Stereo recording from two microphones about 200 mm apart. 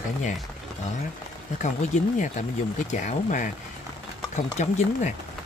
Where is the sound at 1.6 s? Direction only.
35° left (ahead or behind).